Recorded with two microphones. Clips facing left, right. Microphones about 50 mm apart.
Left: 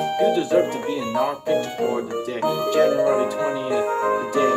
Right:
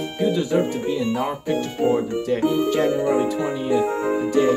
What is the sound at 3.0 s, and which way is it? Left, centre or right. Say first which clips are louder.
Speech: left 1 dB; left.